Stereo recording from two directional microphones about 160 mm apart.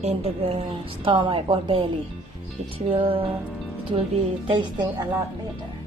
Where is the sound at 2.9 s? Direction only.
35° right (ahead or behind).